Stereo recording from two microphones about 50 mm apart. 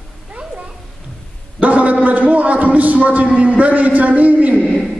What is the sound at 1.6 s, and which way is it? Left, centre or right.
A man's voice, right.